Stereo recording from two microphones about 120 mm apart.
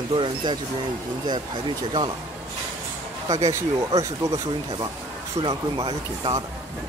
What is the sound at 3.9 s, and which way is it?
Speech, 30° right (ahead or behind).